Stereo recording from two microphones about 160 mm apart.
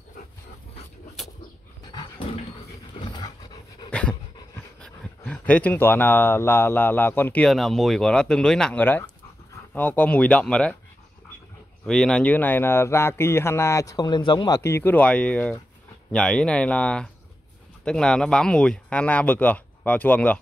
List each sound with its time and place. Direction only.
1.2 s dog: centre (ahead or behind)
1.9 s dog: 30° left (ahead or behind)
3.9 s dog: 5° left (ahead or behind)
4.7 s speech: 5° left (ahead or behind)
11.8 s speech: 5° left (ahead or behind)